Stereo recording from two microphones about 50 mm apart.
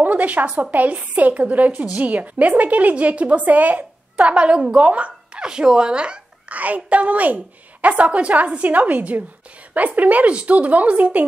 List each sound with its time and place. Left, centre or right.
0.0 s a sound: right
0.6 s a woman's voice: right
6.5 s a woman's voice: right